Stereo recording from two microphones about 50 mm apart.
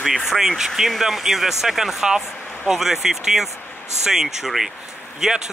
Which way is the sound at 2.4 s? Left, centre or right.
Left.